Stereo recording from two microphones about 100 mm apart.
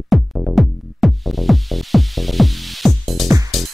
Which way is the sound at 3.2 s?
35° right (ahead or behind).